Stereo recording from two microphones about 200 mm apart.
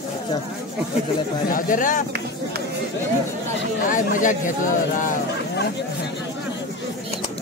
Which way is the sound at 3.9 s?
40° left (ahead or behind).